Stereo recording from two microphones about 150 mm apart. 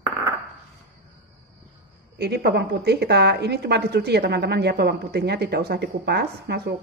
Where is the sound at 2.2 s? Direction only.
90° right.